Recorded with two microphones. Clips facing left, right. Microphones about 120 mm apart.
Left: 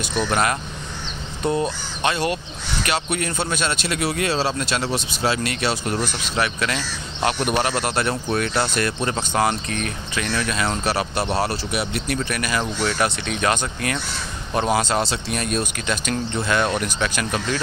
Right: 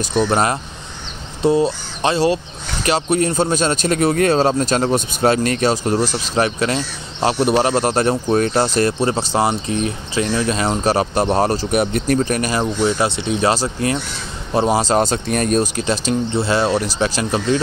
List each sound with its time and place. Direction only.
0.0 s speech: 35° right (ahead or behind)
9.5 s speech: 20° right (ahead or behind); by 12.6 s 35° right (ahead or behind)
12.8 s speech: 25° right (ahead or behind)